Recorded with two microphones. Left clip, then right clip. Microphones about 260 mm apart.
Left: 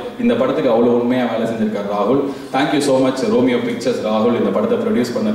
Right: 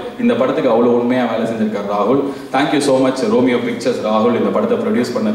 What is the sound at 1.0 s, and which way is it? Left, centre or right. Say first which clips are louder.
A man's voice: right 1 dB; centre.